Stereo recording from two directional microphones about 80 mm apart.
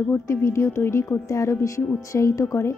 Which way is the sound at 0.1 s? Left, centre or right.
Left.